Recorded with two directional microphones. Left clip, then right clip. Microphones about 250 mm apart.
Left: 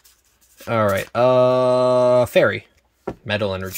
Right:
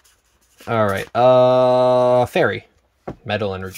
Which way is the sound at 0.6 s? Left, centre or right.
Centre.